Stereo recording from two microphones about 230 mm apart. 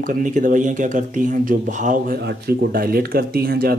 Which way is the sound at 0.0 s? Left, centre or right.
Right.